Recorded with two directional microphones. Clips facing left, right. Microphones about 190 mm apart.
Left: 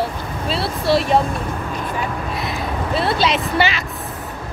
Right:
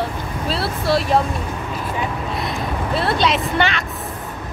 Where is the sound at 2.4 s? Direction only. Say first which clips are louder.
Right 1 dB; centre (ahead or behind).